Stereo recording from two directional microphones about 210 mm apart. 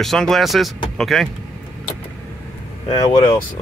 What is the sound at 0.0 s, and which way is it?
Speech, centre (ahead or behind).